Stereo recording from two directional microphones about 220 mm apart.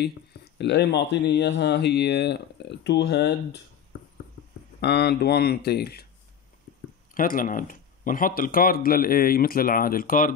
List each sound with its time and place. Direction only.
0.6 s speech: 50° left (ahead or behind)
4.7 s speech: 45° left (ahead or behind)
7.2 s speech: 40° left (ahead or behind)